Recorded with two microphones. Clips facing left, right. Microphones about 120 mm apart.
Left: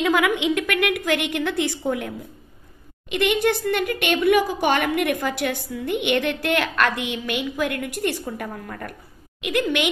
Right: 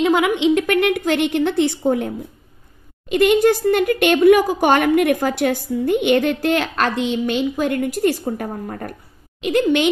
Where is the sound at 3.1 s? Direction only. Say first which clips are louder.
Right 6 dB; 40° right (ahead or behind).